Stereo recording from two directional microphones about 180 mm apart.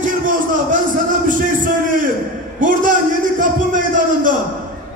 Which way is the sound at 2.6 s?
45° right (ahead or behind).